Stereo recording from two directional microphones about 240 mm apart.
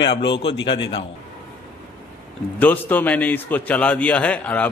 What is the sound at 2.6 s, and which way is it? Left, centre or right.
A man's voice, centre.